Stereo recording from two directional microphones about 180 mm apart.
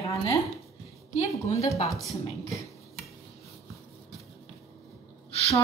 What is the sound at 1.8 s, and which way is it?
Speech, centre (ahead or behind).